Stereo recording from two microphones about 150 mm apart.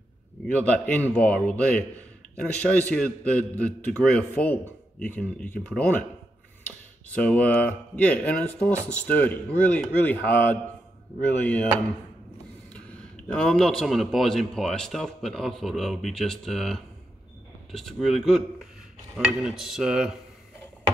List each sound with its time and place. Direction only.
0.5 s a man's voice: 10° left (ahead or behind)
12.7 s speech: 5° left (ahead or behind)